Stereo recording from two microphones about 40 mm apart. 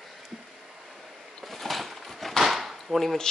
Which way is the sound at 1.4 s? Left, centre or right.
Centre.